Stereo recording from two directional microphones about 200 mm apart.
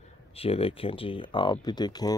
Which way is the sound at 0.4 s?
30° left (ahead or behind).